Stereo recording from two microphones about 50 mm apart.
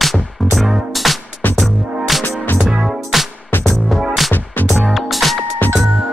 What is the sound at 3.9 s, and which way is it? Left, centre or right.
Music, centre.